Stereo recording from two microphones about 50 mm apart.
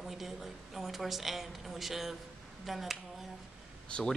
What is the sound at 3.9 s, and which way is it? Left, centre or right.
Speech, left.